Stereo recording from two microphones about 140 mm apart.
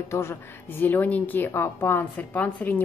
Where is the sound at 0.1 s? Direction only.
15° left (ahead or behind).